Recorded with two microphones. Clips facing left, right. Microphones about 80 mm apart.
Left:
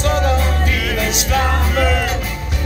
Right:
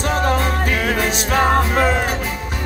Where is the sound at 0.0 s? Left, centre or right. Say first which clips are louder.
Left 1 dB; right.